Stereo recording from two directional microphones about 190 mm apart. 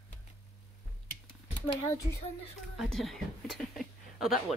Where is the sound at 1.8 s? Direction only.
15° left (ahead or behind).